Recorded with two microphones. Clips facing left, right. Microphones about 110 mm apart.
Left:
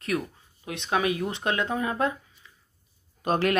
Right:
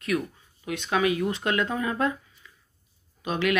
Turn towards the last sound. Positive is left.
turn(degrees=40)  # may be behind; listen again after turning